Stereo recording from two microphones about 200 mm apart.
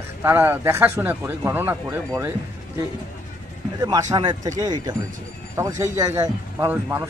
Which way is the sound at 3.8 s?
15° right (ahead or behind).